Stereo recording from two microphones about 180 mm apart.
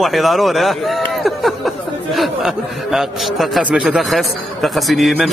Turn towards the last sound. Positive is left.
turn(degrees=0)  # may be behind; listen again after turning